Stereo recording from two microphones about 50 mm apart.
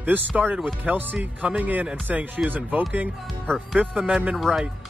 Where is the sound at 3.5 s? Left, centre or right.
Centre.